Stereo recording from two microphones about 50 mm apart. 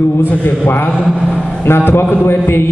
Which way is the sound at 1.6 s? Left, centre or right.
Left.